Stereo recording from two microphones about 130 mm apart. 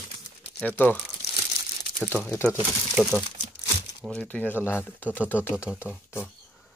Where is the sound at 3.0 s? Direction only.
Centre (ahead or behind).